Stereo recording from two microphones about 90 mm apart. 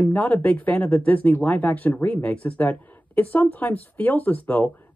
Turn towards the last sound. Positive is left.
turn(degrees=20)  # may be behind; listen again after turning